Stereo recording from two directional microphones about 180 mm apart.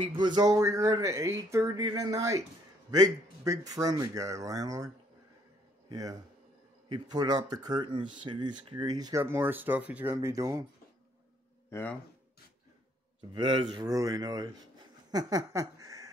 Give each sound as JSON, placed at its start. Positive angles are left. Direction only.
{"t": 0.0, "sound": "speech", "side_deg": -25}
{"t": 9.2, "sound": "speech", "side_deg": -10}
{"t": 11.7, "sound": "speech", "side_deg": 10}
{"t": 13.3, "sound": "speech", "side_deg": -25}